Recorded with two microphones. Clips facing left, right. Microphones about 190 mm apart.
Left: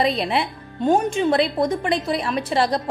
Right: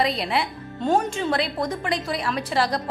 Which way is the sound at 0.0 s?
20° left (ahead or behind).